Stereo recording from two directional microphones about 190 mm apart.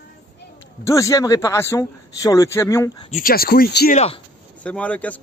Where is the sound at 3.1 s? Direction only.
50° left (ahead or behind).